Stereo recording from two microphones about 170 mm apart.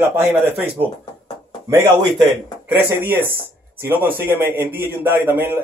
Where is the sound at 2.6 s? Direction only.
10° right (ahead or behind).